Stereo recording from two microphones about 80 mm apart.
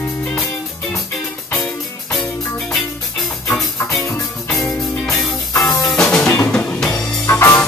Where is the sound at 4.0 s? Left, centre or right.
Left.